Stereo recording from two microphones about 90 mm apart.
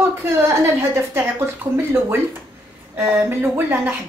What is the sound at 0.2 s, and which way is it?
A woman's voice, 25° right (ahead or behind).